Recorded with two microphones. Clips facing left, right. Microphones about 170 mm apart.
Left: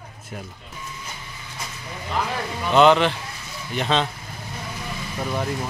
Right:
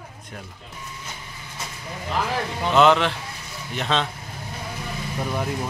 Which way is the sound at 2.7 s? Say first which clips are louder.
Left 2 dB; centre (ahead or behind).